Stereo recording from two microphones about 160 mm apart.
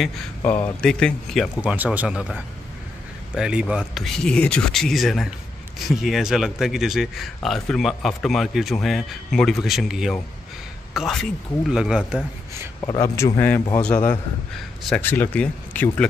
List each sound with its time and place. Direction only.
0.7 s speech: 5° left (ahead or behind)
12.8 s speech: 20° left (ahead or behind)